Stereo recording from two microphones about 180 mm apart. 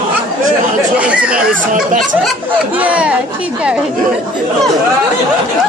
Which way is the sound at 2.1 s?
10° right (ahead or behind).